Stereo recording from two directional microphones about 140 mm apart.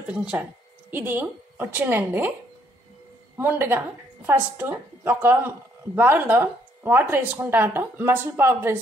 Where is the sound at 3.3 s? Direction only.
15° right (ahead or behind).